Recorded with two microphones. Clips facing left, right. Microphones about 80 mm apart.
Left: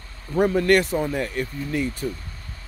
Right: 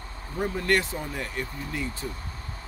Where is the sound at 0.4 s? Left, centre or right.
Left.